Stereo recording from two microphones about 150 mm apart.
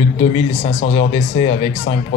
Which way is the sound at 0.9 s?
40° left (ahead or behind).